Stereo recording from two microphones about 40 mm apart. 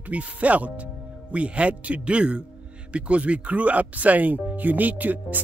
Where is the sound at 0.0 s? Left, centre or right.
Right.